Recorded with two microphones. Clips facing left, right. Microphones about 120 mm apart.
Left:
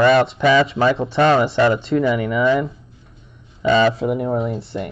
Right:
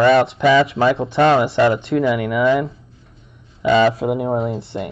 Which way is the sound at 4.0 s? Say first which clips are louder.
Right 1 dB; 75° right (ahead or behind).